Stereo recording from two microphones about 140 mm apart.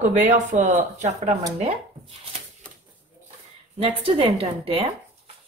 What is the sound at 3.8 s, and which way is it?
A woman's voice, 45° right (ahead or behind).